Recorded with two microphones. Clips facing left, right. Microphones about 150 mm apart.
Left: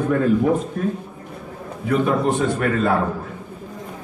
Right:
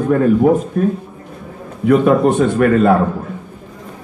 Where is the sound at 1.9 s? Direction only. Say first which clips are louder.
Right 8 dB; 65° right (ahead or behind).